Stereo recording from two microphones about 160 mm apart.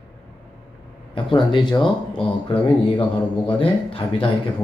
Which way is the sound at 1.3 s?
30° left (ahead or behind).